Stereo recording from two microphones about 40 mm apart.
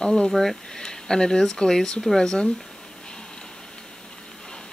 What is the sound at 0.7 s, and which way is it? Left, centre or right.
Speech, centre.